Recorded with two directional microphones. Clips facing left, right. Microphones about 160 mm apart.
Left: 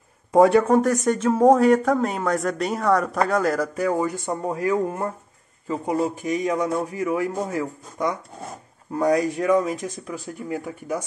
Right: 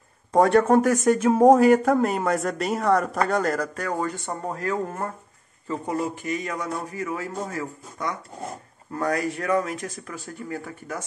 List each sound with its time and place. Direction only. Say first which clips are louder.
0.3 s a man's voice: left 2 dB; 5° left (ahead or behind)